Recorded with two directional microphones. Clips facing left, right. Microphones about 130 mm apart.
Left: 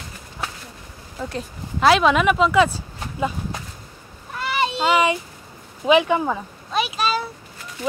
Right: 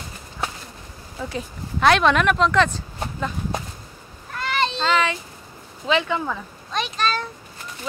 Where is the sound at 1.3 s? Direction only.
5° left (ahead or behind).